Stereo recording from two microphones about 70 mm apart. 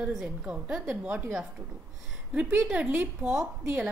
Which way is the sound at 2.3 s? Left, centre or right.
Centre.